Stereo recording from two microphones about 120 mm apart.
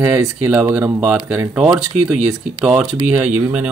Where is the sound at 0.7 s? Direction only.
15° right (ahead or behind).